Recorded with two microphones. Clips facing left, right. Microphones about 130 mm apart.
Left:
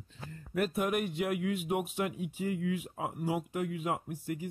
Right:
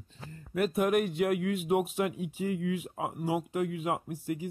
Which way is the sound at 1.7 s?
20° right (ahead or behind).